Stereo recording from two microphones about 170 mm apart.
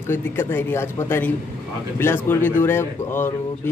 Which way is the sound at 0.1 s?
15° left (ahead or behind).